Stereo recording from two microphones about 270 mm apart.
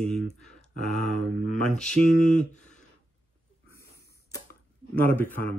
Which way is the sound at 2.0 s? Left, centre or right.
Left.